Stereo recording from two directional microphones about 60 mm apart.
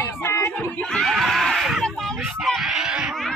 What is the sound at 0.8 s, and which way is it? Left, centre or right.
Screaming, centre.